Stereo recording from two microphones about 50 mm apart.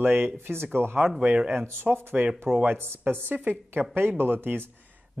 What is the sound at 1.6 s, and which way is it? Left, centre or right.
Speech, right.